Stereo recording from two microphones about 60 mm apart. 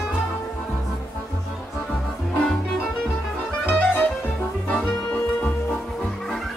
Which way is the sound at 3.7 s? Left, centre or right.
Left.